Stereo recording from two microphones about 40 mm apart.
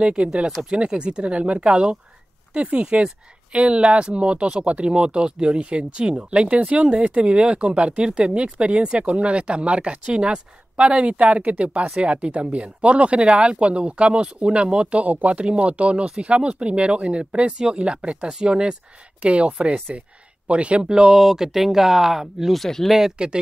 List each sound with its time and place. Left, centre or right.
0.0 s speech: right; by 22.5 s centre
22.5 s speech: centre
22.8 s speech: centre